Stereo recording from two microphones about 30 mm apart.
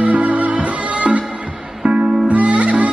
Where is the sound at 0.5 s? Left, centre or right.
Right.